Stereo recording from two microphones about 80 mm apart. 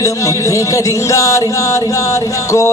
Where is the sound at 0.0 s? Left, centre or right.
Left.